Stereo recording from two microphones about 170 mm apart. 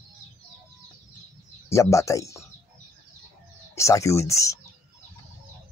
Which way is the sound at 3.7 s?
15° left (ahead or behind).